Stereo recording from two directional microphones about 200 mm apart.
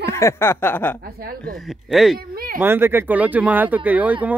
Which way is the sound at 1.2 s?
50° right (ahead or behind).